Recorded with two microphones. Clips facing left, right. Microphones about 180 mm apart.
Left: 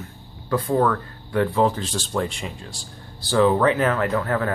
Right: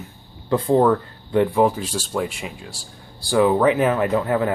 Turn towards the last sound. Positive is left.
turn(degrees=-20)  # may be behind; listen again after turning